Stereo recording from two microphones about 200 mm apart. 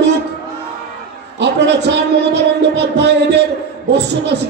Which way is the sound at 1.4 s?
60° right (ahead or behind).